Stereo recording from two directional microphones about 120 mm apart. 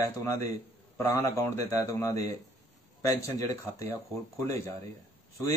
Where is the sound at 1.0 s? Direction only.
25° left (ahead or behind).